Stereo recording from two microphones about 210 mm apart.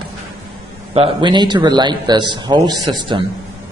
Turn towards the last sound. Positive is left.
turn(degrees=-20)  # may be behind; listen again after turning